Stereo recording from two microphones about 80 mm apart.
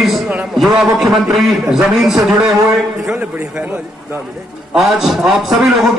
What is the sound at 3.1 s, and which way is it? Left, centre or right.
Speech, centre.